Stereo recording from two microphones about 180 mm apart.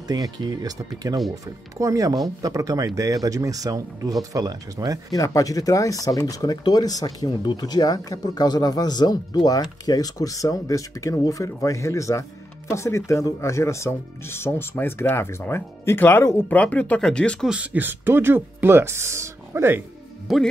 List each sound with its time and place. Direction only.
0.1 s speech: 20° right (ahead or behind)
5.1 s speech: 20° left (ahead or behind); by 19.8 s 15° right (ahead or behind)
20.3 s speech: centre (ahead or behind)